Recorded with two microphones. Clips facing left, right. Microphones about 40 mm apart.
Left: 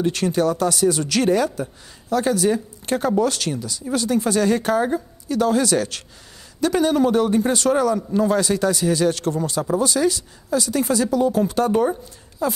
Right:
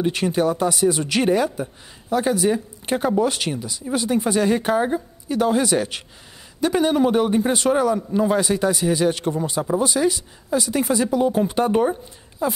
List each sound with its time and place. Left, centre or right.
0.0 s speech: centre